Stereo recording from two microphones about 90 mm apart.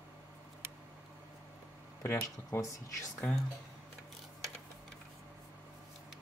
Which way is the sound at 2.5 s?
30° left (ahead or behind).